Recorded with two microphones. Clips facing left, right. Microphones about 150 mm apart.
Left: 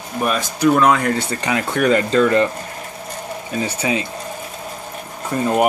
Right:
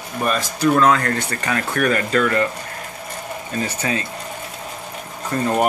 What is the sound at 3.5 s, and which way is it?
Speech, 15° left (ahead or behind).